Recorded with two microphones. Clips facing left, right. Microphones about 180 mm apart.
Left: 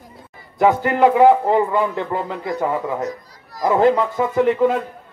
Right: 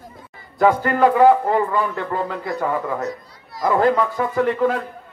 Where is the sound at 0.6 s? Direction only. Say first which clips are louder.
Left 1 dB; 20° left (ahead or behind).